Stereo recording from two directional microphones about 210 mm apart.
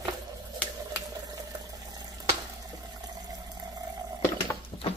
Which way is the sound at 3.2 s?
20° right (ahead or behind).